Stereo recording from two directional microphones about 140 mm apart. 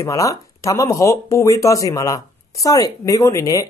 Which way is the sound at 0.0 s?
25° left (ahead or behind).